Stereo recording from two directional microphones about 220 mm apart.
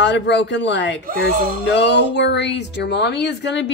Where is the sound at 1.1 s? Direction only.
40° right (ahead or behind).